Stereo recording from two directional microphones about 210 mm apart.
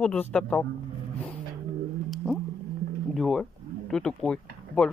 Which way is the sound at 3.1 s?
Centre (ahead or behind).